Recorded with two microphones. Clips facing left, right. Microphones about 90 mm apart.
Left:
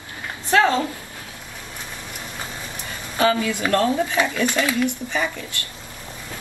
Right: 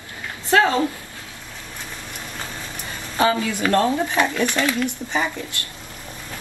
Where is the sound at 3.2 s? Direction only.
25° right (ahead or behind).